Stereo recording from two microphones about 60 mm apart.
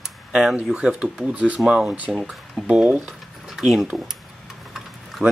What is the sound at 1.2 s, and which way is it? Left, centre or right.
Speech, right.